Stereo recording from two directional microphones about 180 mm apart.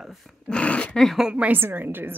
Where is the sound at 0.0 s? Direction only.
Centre (ahead or behind).